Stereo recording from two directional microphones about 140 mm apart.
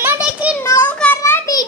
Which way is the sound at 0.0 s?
15° right (ahead or behind).